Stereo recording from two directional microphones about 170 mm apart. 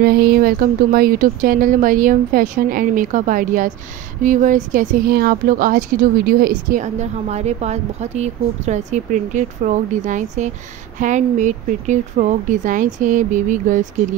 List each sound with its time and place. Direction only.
0.0 s speech: 60° right (ahead or behind)